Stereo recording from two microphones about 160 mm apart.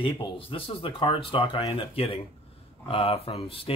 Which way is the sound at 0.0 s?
35° left (ahead or behind).